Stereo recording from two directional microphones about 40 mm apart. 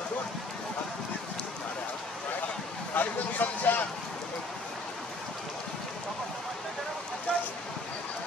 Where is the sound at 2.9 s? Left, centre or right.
Left.